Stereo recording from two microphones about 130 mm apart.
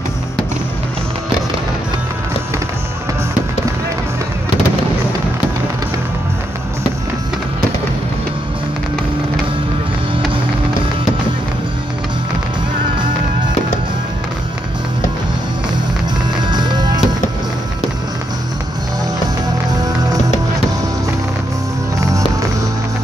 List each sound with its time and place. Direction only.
16.4 s music: 35° right (ahead or behind)
19.7 s music: 30° right (ahead or behind)
21.9 s music: 25° right (ahead or behind)